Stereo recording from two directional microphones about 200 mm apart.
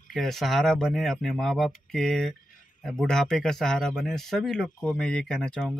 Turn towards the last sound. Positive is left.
turn(degrees=0)  # may be behind; listen again after turning